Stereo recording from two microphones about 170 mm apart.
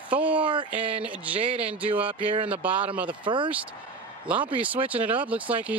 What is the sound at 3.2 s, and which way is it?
Speech, 30° right (ahead or behind).